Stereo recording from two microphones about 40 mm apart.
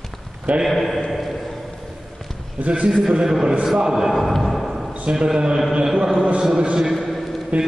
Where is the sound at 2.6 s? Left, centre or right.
Right.